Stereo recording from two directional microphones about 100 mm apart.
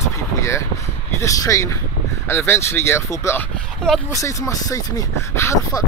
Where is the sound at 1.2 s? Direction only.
35° left (ahead or behind).